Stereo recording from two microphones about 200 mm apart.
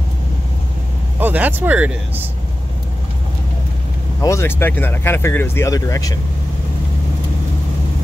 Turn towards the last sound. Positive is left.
turn(degrees=15)  # may be behind; listen again after turning